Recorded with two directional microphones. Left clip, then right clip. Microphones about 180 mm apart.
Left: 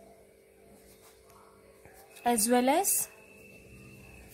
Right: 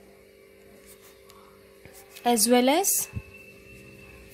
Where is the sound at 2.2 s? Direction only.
15° right (ahead or behind).